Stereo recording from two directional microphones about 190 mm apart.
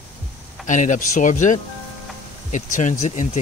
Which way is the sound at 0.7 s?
40° left (ahead or behind).